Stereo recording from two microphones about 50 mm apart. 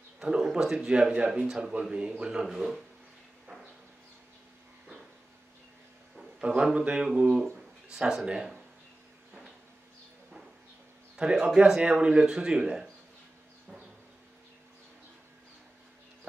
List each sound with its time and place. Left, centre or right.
0.2 s speech: centre
6.4 s speech: right
7.5 s a sound: centre
8.3 s speech: centre
11.3 s speech: centre